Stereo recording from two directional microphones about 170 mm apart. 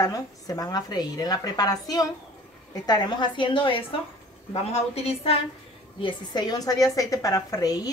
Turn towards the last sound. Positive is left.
turn(degrees=20)  # may be behind; listen again after turning